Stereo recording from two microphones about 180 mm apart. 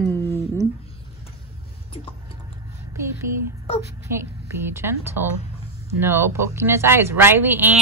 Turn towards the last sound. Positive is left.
turn(degrees=-10)  # may be behind; listen again after turning